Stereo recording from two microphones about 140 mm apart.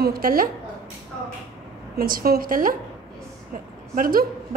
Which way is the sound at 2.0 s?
90° right.